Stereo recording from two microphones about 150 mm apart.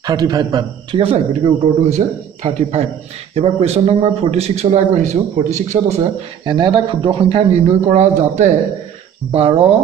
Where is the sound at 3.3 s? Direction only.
45° right (ahead or behind).